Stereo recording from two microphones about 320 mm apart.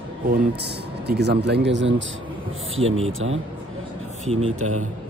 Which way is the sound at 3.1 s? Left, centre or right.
Right.